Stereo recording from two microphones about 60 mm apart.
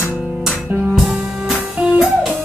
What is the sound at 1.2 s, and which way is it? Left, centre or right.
Music, centre.